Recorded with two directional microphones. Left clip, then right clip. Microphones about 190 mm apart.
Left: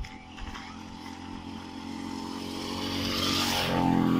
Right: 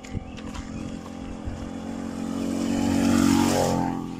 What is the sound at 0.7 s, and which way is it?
Vehicle, 80° right.